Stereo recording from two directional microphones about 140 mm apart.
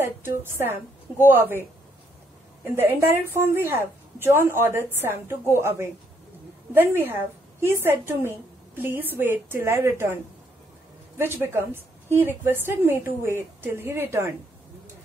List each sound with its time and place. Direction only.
0.0 s a woman's voice: 15° right (ahead or behind)
11.1 s a woman's voice: 15° right (ahead or behind)